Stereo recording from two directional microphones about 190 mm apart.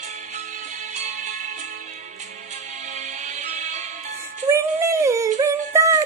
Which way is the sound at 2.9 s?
35° right (ahead or behind).